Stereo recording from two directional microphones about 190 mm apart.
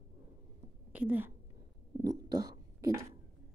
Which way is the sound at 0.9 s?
5° right (ahead or behind).